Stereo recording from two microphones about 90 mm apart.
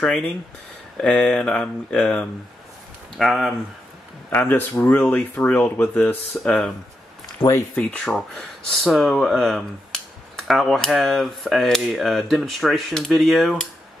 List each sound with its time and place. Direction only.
0.9 s speech: 10° left (ahead or behind)
4.3 s speech: 20° left (ahead or behind)
7.4 s speech: 45° left (ahead or behind)
8.0 s speech: 5° left (ahead or behind)